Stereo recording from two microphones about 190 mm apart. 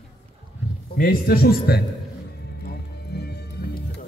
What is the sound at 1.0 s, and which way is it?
Speech, 50° left (ahead or behind).